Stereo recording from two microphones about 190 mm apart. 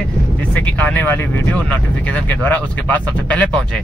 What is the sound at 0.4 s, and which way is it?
Speech, 10° left (ahead or behind).